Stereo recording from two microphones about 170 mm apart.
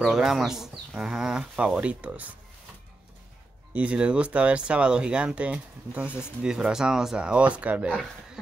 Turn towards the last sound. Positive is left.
turn(degrees=-10)  # may be behind; listen again after turning